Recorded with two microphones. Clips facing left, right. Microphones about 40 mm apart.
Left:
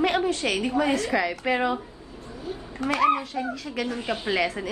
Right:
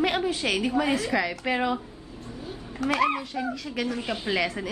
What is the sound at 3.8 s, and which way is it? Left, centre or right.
Speech, left.